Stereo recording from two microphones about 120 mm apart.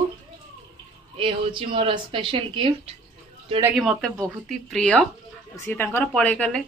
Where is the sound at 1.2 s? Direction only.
45° right (ahead or behind).